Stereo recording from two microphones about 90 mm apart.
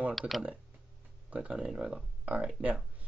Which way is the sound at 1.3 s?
15° right (ahead or behind).